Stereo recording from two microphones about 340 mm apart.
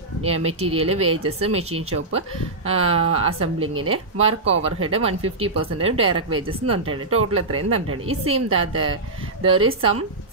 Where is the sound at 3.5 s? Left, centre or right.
Right.